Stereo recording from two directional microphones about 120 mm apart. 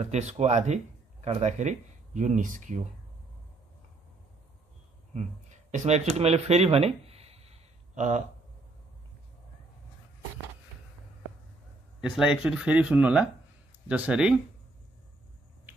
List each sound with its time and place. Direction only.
0.0 s speech: 70° right (ahead or behind); by 2.8 s 90° right
5.1 s a sound: 75° right (ahead or behind)
12.0 s speech: 5° right (ahead or behind)